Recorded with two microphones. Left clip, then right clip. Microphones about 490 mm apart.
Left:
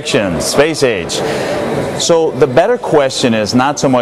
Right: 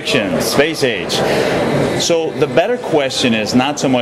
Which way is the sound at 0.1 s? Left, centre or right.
Left.